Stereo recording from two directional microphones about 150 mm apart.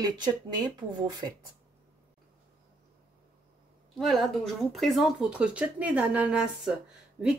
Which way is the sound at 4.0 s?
Centre (ahead or behind).